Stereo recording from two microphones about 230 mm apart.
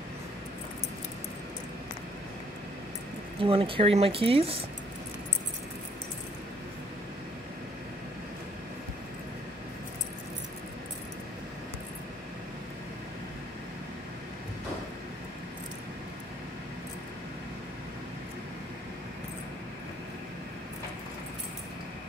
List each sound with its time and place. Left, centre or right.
3.3 s speech: right